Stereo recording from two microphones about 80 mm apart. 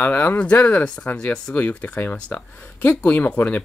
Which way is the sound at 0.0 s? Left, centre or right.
Left.